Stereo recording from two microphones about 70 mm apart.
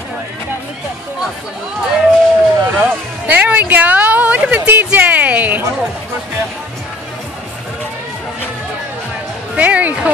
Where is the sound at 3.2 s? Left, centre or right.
Right.